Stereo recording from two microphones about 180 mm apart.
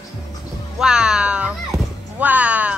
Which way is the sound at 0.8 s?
5° right (ahead or behind).